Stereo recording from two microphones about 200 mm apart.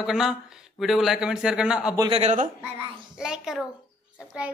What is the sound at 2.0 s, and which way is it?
Speech, 30° right (ahead or behind).